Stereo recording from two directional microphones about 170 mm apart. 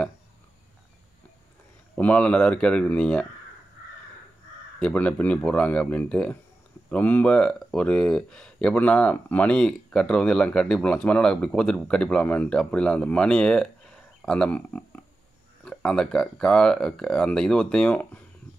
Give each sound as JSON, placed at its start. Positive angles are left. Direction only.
{"t": 2.0, "sound": "speech", "side_deg": 10}
{"t": 4.7, "sound": "speech", "side_deg": 5}